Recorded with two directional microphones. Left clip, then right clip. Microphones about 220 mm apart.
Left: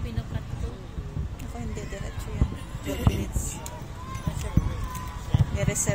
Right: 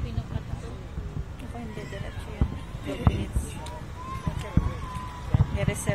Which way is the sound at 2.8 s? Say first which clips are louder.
Even; 15° left (ahead or behind).